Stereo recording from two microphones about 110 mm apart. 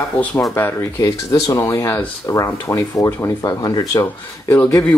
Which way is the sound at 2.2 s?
30° left (ahead or behind).